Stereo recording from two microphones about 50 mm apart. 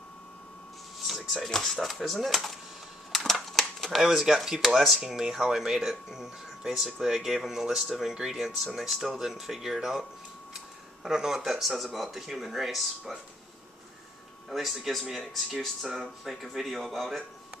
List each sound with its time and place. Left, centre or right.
1.0 s speech: centre
3.1 s typewriter: centre
4.6 s speech: centre
11.1 s speech: centre
14.5 s speech: centre